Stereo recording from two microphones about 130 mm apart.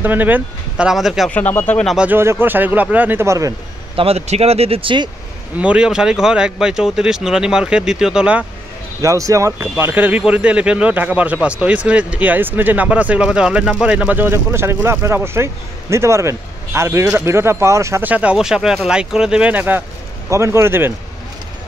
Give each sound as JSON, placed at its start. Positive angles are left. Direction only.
{"t": 0.0, "sound": "speech", "side_deg": -15}
{"t": 1.3, "sound": "speech", "side_deg": 15}
{"t": 2.0, "sound": "speech", "side_deg": -15}
{"t": 3.9, "sound": "speech", "side_deg": -50}
{"t": 5.6, "sound": "speech", "side_deg": -10}
{"t": 9.0, "sound": "speech", "side_deg": -25}